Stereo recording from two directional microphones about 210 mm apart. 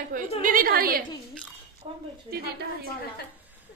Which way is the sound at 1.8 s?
30° right (ahead or behind).